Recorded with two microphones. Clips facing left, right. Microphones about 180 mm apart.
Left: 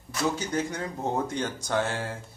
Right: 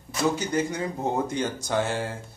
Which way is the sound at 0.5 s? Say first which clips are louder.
Right 3 dB; 5° right (ahead or behind).